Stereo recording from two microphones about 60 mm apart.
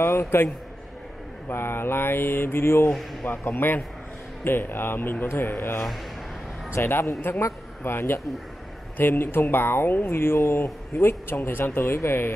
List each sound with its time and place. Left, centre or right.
0.0 s a man's voice: left
1.5 s speech: left
2.9 s speech: centre
3.3 s speech: left